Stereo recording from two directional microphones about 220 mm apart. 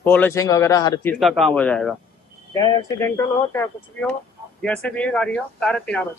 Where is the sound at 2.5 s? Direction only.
15° left (ahead or behind).